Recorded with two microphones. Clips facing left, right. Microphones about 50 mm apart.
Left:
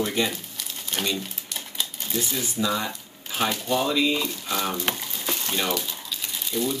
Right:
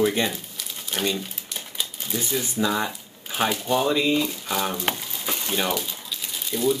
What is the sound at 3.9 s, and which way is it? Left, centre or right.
Speech, right.